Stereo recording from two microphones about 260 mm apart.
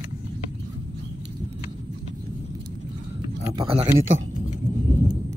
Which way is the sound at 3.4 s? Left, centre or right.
Centre.